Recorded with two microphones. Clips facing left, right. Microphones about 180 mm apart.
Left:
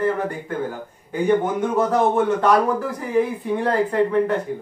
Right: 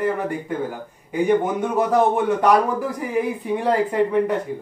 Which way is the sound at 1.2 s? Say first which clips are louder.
Left 1 dB; 15° right (ahead or behind).